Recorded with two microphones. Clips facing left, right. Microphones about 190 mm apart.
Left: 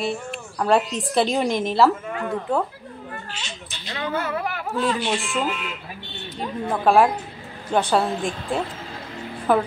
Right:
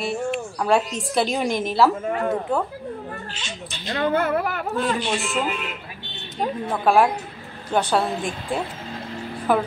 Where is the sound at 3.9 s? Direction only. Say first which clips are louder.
Right 5 dB; 45° right (ahead or behind).